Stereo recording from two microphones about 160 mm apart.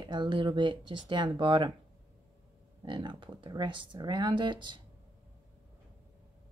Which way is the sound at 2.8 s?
30° right (ahead or behind).